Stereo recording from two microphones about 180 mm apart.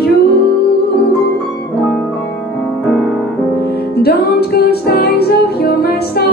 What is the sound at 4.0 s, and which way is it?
Music, 60° left (ahead or behind).